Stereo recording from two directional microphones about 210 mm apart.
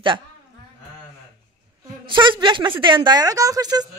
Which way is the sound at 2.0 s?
25° right (ahead or behind).